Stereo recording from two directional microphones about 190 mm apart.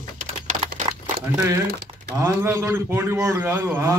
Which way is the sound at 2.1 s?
15° right (ahead or behind).